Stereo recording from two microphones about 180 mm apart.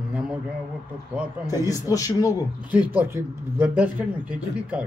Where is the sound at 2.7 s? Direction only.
10° right (ahead or behind).